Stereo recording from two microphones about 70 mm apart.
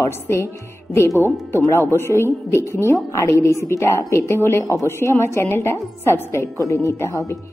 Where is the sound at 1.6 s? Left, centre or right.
Left.